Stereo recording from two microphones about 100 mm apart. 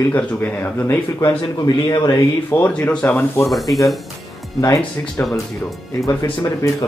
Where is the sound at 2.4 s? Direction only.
20° left (ahead or behind).